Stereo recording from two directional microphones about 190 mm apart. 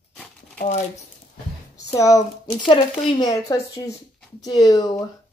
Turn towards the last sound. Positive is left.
turn(degrees=20)  # may be behind; listen again after turning